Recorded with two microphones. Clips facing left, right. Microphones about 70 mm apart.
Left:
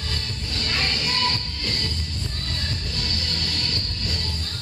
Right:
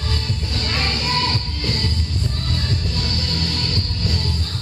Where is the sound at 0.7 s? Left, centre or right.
Right.